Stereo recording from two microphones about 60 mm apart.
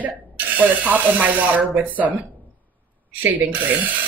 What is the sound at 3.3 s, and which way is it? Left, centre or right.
Speech, right.